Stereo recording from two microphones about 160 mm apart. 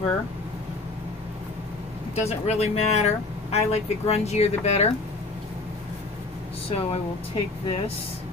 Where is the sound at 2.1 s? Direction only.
40° left (ahead or behind).